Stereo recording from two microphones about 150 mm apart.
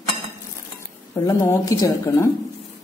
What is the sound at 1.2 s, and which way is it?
A woman's voice, 20° left (ahead or behind).